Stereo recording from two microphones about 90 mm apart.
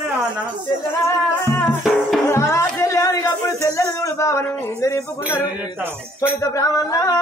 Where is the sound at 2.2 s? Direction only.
30° left (ahead or behind).